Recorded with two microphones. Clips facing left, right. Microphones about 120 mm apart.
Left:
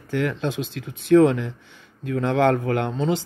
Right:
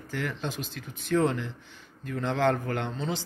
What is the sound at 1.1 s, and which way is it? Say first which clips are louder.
A man's voice: left 10 dB; 65° left (ahead or behind).